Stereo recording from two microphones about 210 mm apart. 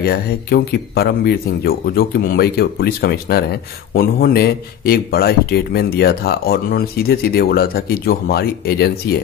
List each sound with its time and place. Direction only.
0.0 s speech: 45° left (ahead or behind)